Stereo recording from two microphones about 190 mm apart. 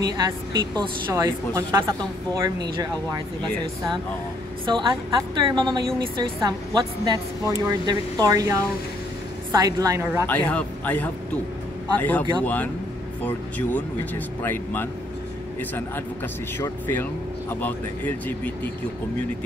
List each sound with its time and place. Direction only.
0.0 s a woman's voice: 20° right (ahead or behind)
4.6 s a woman's voice: 25° right (ahead or behind)
10.2 s speech: 10° left (ahead or behind)
16.5 s speech: 10° left (ahead or behind)